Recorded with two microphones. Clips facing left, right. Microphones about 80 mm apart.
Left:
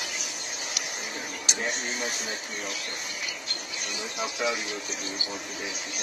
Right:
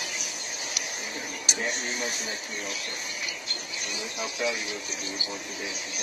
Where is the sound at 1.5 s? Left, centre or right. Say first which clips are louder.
Even; centre.